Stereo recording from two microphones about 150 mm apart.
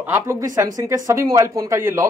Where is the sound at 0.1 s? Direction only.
20° right (ahead or behind).